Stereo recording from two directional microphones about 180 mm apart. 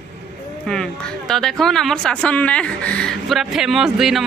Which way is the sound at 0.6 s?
5° left (ahead or behind).